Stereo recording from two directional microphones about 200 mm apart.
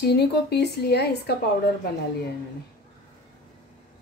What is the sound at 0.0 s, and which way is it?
A woman's voice, 55° left (ahead or behind).